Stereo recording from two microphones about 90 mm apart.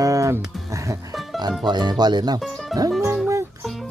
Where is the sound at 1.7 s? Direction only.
55° right (ahead or behind).